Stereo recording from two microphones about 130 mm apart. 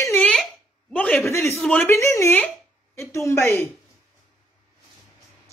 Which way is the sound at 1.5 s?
10° left (ahead or behind).